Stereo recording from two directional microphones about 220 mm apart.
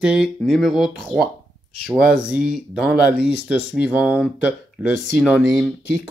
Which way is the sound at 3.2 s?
50° left (ahead or behind).